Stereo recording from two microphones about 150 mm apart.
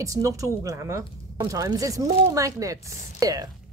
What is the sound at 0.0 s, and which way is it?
A woman's voice, 20° right (ahead or behind).